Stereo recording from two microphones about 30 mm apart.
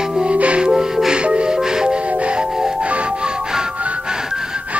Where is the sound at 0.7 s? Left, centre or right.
Centre.